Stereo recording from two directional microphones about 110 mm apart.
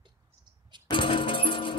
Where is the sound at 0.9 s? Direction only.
50° left (ahead or behind).